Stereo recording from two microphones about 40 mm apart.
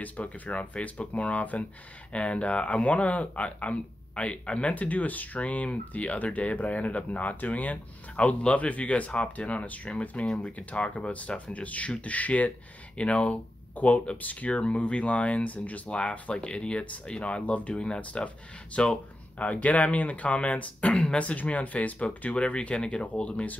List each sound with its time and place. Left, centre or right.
0.0 s speech: left
2.1 s speech: left
13.8 s speech: left
15.9 s speech: left
19.3 s speech: left
20.9 s speech: centre
21.2 s speech: left